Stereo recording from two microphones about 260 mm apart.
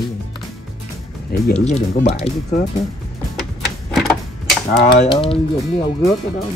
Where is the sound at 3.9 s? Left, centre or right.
Centre.